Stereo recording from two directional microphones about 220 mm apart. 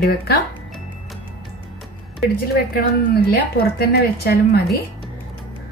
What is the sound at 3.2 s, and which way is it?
A woman's voice, 45° left (ahead or behind).